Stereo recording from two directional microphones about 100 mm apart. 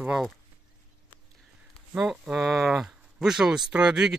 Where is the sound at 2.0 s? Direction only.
5° right (ahead or behind).